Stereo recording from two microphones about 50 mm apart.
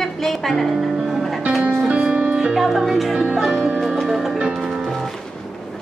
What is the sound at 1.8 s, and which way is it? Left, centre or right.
Music, right.